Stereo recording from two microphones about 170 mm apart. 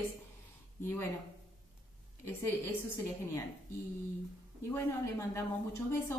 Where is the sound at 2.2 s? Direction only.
15° left (ahead or behind).